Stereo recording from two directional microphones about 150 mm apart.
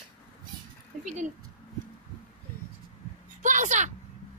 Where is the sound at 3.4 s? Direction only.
55° right (ahead or behind).